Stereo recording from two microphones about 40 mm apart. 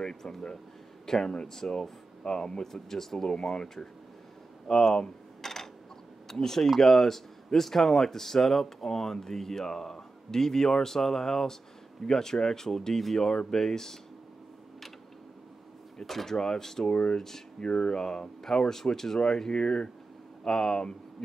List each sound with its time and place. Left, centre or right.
0.0 s speech: centre
5.4 s a sound: centre
6.2 s speech: centre
16.0 s speech: centre
16.9 s speech: left